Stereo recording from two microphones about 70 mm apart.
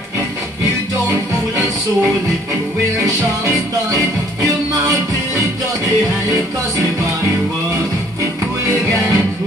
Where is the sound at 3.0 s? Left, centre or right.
Right.